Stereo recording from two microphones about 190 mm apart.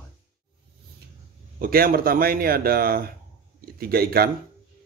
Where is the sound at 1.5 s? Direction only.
50° right (ahead or behind).